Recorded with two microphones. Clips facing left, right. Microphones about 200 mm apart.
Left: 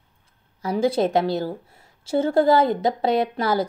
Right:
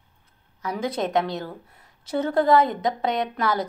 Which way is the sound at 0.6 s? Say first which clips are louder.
Left 6 dB; 30° left (ahead or behind).